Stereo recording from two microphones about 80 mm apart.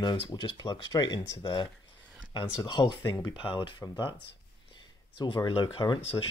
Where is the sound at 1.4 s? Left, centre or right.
Left.